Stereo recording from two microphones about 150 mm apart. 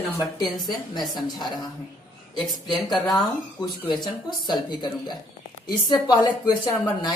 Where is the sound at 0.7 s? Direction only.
30° left (ahead or behind).